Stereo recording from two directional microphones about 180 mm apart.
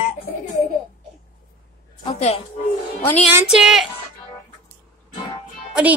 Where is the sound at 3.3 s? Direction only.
5° right (ahead or behind).